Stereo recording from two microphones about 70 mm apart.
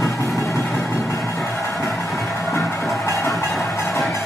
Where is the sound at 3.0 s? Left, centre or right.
Left.